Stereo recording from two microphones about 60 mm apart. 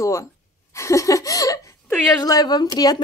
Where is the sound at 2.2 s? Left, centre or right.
Left.